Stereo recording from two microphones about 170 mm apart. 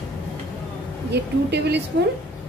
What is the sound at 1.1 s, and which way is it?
Speech, 80° right.